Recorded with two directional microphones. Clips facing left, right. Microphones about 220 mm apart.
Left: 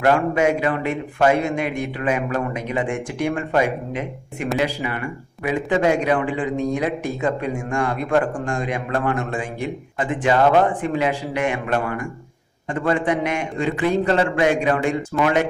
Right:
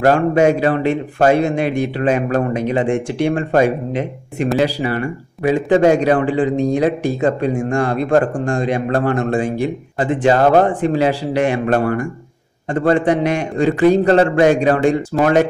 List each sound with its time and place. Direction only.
0.0 s a man's voice: 35° right (ahead or behind)